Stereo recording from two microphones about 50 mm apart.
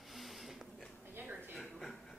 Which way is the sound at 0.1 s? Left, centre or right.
Centre.